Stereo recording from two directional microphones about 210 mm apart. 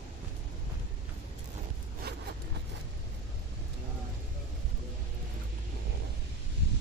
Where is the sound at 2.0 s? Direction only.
50° right (ahead or behind).